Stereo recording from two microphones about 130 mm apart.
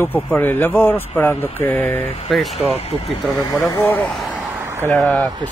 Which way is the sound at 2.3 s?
Centre (ahead or behind).